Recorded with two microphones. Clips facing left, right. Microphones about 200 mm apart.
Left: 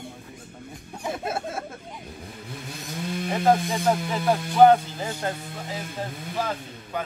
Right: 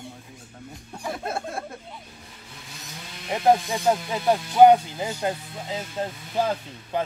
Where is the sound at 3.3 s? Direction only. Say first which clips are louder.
Right 2 dB; 15° right (ahead or behind).